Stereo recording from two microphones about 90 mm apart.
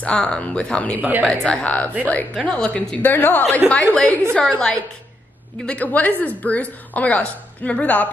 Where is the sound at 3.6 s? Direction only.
5° right (ahead or behind).